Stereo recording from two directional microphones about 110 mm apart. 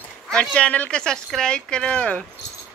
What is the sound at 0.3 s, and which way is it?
Speech, 10° left (ahead or behind).